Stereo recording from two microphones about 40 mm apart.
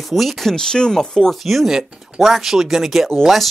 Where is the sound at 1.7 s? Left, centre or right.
Centre.